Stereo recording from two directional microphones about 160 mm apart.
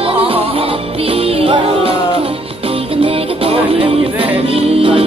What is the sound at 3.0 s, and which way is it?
Music, 35° right (ahead or behind).